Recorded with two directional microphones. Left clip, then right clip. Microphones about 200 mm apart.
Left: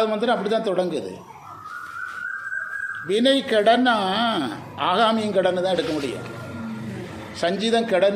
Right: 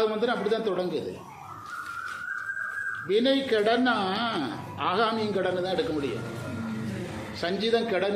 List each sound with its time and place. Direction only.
0.0 s a man's voice: 40° left (ahead or behind)
3.1 s a man's voice: 40° left (ahead or behind)
7.3 s a man's voice: 40° left (ahead or behind)